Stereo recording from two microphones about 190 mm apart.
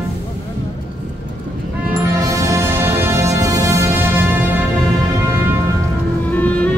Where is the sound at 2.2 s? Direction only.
15° right (ahead or behind).